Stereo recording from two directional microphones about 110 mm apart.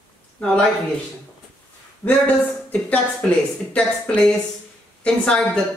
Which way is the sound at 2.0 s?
20° left (ahead or behind).